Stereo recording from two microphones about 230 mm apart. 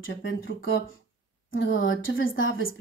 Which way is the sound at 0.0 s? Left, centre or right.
Left.